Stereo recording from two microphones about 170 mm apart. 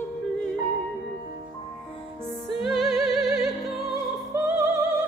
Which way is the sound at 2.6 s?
Centre (ahead or behind).